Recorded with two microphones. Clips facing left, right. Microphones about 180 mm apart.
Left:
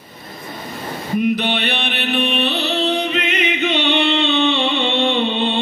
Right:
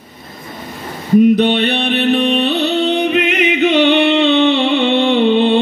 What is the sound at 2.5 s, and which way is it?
Music, 65° right (ahead or behind).